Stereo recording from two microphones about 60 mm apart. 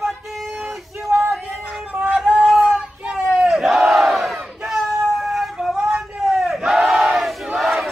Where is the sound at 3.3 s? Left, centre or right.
Centre.